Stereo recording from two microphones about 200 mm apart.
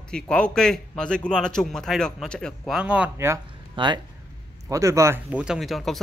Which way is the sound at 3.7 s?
25° right (ahead or behind).